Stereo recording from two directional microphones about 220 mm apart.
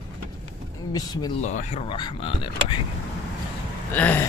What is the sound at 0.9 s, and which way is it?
Speech, 20° left (ahead or behind).